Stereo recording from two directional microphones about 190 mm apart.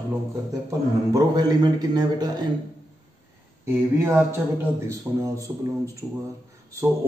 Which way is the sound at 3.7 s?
15° right (ahead or behind).